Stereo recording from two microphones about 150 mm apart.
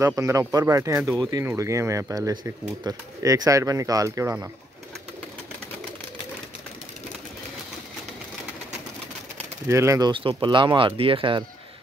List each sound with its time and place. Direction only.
0.0 s speech: 20° right (ahead or behind)
9.7 s speech: 20° right (ahead or behind); by 11.4 s 35° right (ahead or behind)